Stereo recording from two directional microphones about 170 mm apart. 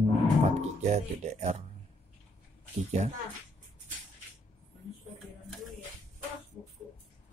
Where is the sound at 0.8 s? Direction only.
40° right (ahead or behind).